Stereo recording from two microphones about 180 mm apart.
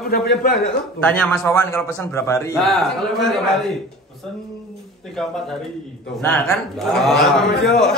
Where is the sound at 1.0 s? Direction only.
10° left (ahead or behind).